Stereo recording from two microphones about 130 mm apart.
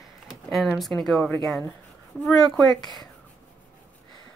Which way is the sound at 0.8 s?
Centre (ahead or behind).